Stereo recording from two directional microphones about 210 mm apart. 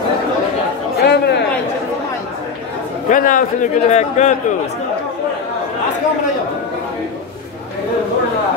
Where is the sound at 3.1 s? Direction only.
40° left (ahead or behind).